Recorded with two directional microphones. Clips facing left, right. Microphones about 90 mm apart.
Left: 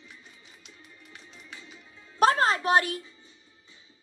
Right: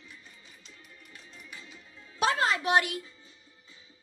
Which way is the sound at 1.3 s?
25° left (ahead or behind).